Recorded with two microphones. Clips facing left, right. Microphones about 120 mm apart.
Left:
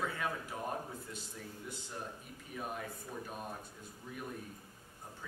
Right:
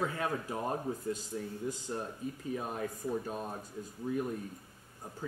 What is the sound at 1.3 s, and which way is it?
Speech, 45° right (ahead or behind).